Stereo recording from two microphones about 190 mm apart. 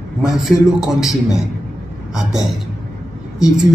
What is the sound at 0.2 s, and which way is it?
Speech, centre (ahead or behind).